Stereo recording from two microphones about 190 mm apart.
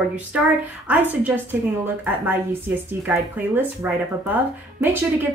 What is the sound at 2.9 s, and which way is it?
Speech, 10° right (ahead or behind).